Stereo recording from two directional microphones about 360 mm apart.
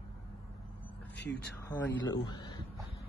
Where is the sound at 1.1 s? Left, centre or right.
Left.